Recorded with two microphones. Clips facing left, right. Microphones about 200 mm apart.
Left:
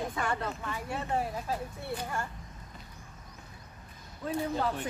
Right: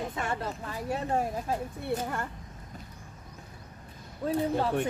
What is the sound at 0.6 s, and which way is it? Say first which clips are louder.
Speech: right 6 dB; 40° right (ahead or behind).